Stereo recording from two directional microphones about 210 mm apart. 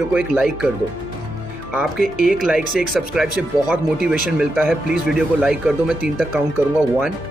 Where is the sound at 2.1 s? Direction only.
40° right (ahead or behind).